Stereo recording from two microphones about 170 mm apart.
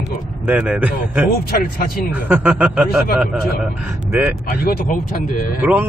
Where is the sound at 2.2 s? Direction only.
10° right (ahead or behind).